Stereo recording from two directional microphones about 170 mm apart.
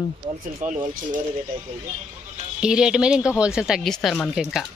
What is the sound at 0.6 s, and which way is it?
Speech, 50° right (ahead or behind).